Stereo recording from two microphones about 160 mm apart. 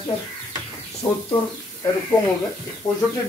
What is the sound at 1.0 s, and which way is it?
Speech, 30° left (ahead or behind).